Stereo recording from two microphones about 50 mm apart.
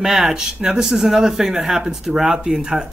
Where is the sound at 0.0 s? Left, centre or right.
Centre.